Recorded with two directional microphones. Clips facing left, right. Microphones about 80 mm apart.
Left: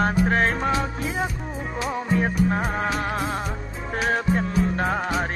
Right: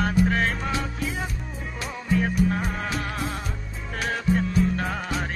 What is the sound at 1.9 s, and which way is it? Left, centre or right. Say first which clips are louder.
Music: even; left.